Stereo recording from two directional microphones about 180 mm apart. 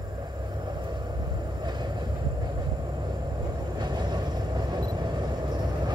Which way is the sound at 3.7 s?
25° right (ahead or behind).